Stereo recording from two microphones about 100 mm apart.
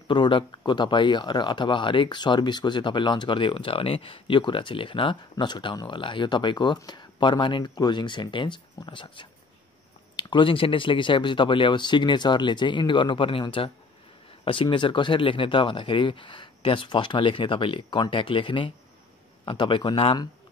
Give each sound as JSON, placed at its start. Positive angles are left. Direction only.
{"t": 0.1, "sound": "speech", "side_deg": 55}